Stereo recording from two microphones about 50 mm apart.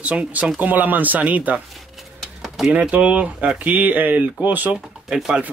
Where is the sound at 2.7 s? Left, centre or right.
Right.